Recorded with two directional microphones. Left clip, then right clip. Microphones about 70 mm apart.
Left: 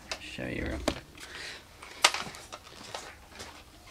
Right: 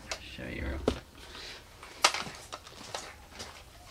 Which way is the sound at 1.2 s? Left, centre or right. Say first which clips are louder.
Left 6 dB; left.